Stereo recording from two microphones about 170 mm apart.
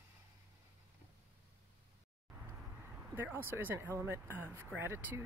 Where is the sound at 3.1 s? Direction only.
15° right (ahead or behind).